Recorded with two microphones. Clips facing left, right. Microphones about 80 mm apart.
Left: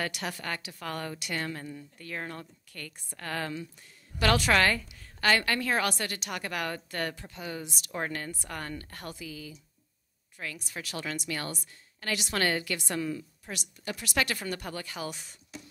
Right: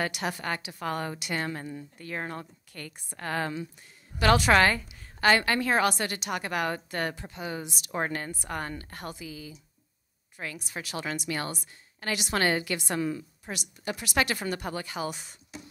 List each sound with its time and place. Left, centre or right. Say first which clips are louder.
0.0 s a woman's voice: right 3 dB; centre